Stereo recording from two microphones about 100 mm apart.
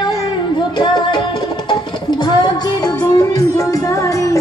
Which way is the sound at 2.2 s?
45° left (ahead or behind).